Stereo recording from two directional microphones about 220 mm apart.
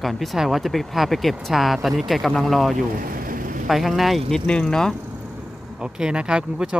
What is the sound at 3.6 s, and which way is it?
Speech, centre (ahead or behind).